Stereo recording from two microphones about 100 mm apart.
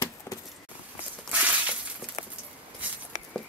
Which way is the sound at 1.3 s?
15° right (ahead or behind).